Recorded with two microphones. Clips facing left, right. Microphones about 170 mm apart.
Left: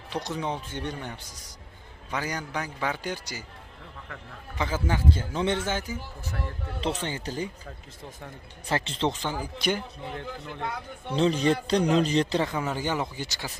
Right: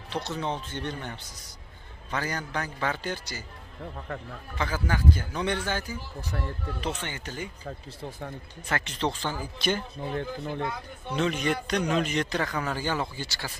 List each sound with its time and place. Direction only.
0.1 s a man's voice: 15° left (ahead or behind)
4.6 s speech: 20° left (ahead or behind)
6.8 s speech: 35° left (ahead or behind)
8.6 s speech: 25° left (ahead or behind)
10.1 s speech: 40° right (ahead or behind)
11.1 s speech: 30° left (ahead or behind)